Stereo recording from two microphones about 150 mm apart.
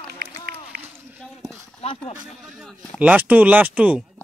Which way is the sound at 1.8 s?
40° left (ahead or behind).